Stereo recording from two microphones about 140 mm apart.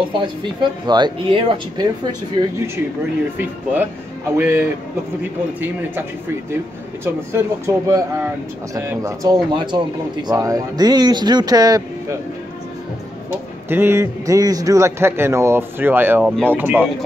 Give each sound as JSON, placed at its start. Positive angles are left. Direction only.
{"t": 0.0, "sound": "speech", "side_deg": -35}
{"t": 4.4, "sound": "a man's voice", "side_deg": -15}
{"t": 7.1, "sound": "a man's voice", "side_deg": -20}
{"t": 13.7, "sound": "a man's voice", "side_deg": -15}